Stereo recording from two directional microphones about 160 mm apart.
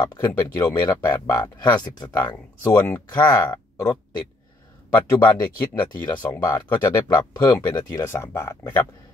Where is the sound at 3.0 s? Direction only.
25° left (ahead or behind).